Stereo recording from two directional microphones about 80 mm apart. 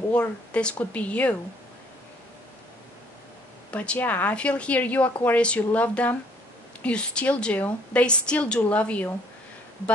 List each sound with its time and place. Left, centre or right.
0.1 s speech: centre
3.7 s speech: centre